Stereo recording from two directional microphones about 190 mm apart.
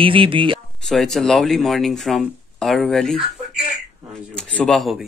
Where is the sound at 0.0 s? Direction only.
25° right (ahead or behind).